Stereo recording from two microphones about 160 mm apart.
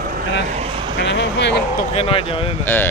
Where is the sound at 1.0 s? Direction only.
90° left.